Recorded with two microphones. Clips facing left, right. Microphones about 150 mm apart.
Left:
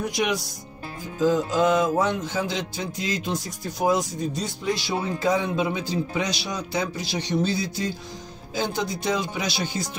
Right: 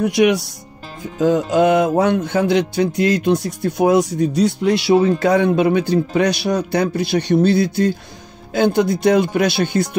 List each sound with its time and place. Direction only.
0.0 s speech: 65° right (ahead or behind)
1.1 s music: 65° right (ahead or behind)